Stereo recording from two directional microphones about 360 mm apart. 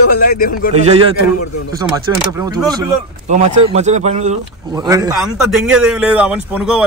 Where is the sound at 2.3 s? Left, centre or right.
Centre.